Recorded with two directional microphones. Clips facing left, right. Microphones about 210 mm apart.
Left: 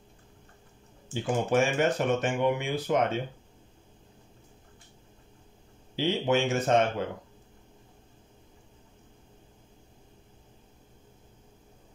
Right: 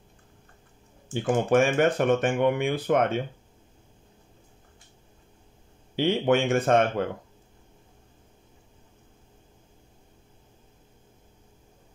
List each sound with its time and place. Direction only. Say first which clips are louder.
1.0 s speech: right 4 dB; 50° right (ahead or behind)
5.9 s speech: right 4 dB; 55° right (ahead or behind)